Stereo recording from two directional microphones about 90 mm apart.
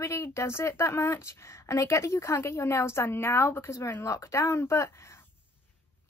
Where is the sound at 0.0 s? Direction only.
35° left (ahead or behind).